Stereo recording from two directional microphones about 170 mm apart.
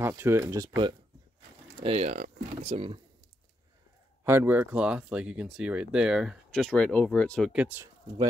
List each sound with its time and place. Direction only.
0.0 s speech: 15° right (ahead or behind)
1.8 s speech: 35° right (ahead or behind)
4.2 s speech: 15° right (ahead or behind); by 7.5 s 5° left (ahead or behind)
7.5 s speech: 10° right (ahead or behind)